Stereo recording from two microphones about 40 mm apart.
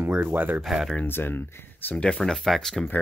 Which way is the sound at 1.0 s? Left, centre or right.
Left.